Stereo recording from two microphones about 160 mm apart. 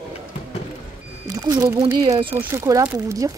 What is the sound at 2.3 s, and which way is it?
Speech, 20° right (ahead or behind).